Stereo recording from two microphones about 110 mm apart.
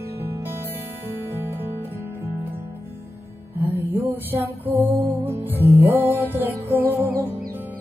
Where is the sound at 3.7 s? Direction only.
20° right (ahead or behind).